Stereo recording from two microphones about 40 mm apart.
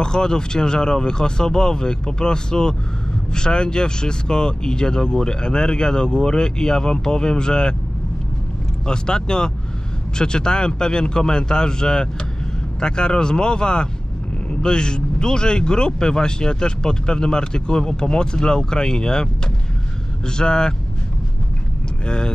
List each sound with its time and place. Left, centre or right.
0.0 s a man's voice: centre
8.8 s a man's voice: centre
20.2 s a man's voice: centre
22.0 s speech: left